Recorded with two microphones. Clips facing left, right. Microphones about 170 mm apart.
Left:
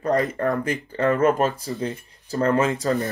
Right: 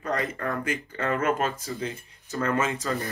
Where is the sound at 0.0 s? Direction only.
40° left (ahead or behind).